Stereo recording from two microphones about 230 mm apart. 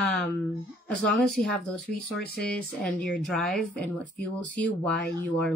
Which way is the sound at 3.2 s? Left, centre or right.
Centre.